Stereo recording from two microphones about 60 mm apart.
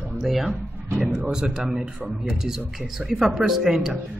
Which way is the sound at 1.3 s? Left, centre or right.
Centre.